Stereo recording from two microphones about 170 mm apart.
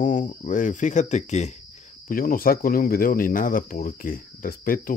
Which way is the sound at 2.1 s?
60° left (ahead or behind).